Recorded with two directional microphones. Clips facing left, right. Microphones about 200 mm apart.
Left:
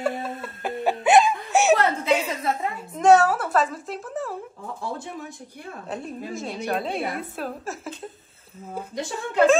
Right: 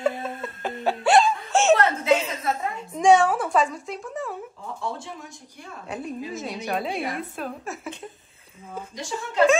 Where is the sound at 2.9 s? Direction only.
5° left (ahead or behind).